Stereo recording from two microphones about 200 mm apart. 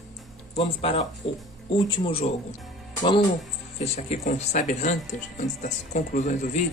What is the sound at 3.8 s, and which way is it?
Speech, 35° left (ahead or behind).